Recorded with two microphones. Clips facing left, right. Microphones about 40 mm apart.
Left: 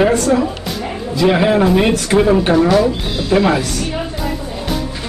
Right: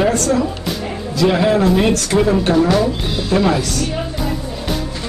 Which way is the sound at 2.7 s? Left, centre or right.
Centre.